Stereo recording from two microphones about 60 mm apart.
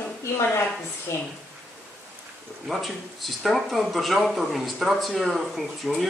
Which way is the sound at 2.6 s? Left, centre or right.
Centre.